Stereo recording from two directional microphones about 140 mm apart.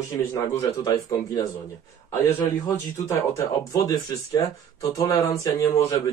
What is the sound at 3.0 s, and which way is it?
Speech, 20° left (ahead or behind).